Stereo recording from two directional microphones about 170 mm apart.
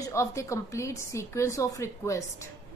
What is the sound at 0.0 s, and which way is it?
A woman's voice, 15° left (ahead or behind).